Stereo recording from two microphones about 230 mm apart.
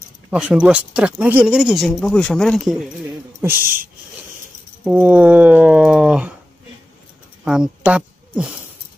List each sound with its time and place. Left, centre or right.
0.3 s speech: centre
4.8 s speech: centre
7.4 s speech: centre